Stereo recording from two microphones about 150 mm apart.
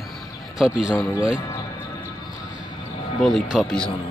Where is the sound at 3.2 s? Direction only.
Centre (ahead or behind).